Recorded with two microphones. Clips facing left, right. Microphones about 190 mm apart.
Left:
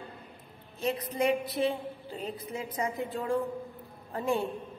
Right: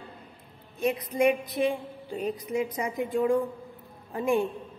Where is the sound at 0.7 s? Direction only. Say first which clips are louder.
Right 4 dB; 15° right (ahead or behind).